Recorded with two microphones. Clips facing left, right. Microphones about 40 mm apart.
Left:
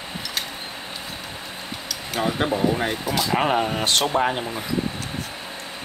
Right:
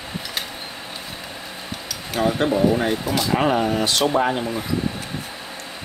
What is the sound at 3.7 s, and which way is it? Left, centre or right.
Speech, left.